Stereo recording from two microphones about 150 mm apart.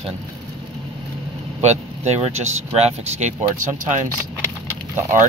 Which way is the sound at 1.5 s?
50° right (ahead or behind).